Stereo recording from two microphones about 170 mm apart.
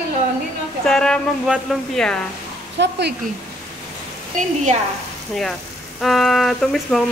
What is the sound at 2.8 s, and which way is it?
Speech, 80° right.